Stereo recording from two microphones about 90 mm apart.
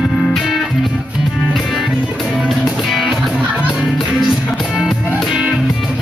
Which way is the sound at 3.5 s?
15° right (ahead or behind).